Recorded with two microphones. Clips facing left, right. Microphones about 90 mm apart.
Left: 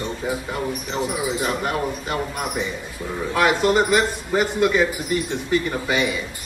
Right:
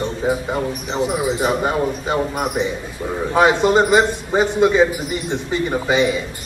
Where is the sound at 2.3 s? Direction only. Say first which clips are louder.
Right 5 dB; 30° right (ahead or behind).